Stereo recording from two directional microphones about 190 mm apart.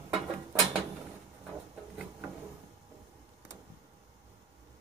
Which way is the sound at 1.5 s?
5° right (ahead or behind).